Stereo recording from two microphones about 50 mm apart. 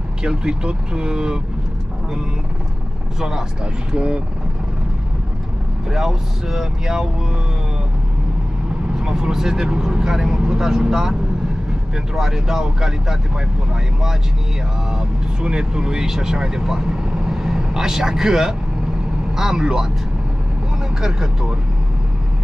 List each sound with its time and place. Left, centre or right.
0.2 s speech: centre
3.2 s speech: centre
5.9 s speech: centre
8.9 s speech: centre
12.2 s speech: centre
14.9 s speech: centre
21.0 s speech: centre